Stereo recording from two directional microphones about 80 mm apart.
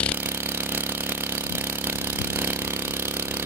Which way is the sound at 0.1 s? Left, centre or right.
Right.